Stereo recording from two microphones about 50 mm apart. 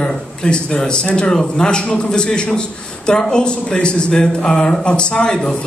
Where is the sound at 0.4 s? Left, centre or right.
Centre.